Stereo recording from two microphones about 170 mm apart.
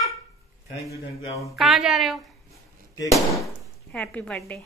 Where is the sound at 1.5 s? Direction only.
Centre (ahead or behind).